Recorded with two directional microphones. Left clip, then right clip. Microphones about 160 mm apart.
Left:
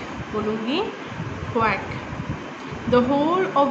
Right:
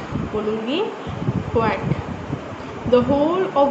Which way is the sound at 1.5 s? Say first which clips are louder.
Right 1 dB; 25° left (ahead or behind).